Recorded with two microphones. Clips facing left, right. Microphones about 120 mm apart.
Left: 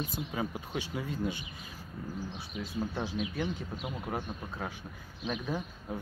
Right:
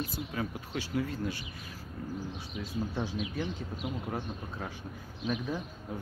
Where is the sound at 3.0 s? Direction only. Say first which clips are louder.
Left 1 dB; 15° left (ahead or behind); by 5.6 s centre (ahead or behind).